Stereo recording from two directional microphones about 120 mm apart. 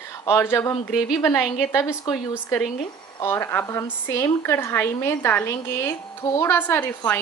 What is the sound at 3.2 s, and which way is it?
Speech, 20° left (ahead or behind).